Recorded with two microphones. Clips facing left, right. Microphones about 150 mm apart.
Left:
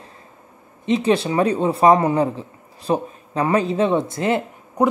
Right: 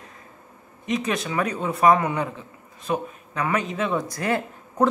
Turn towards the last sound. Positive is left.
turn(degrees=15)  # may be behind; listen again after turning